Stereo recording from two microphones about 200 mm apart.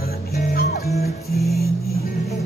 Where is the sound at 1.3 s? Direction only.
Centre (ahead or behind).